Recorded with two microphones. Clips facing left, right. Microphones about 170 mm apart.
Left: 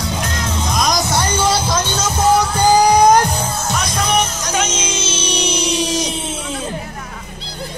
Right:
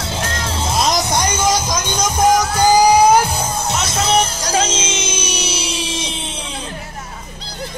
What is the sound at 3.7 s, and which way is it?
Music, 25° right (ahead or behind).